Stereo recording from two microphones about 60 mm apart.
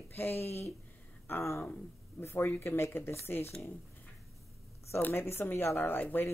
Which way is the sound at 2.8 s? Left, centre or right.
Left.